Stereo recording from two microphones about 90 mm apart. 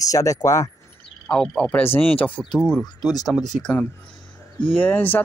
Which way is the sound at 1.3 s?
10° left (ahead or behind).